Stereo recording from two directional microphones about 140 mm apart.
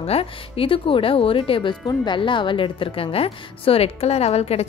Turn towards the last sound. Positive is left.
turn(degrees=50)  # may be behind; listen again after turning